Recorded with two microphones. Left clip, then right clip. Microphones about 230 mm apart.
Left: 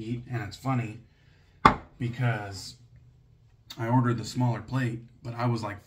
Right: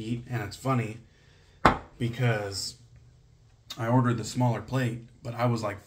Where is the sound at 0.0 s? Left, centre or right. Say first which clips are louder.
Right 1 dB; centre.